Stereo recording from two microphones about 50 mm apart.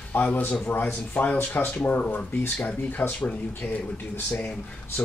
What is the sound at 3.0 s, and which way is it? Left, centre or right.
Speech, left.